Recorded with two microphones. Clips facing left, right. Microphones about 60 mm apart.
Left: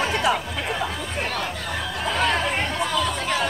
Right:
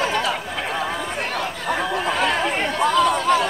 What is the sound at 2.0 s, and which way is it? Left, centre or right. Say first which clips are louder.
Chatter: left 3 dB; centre.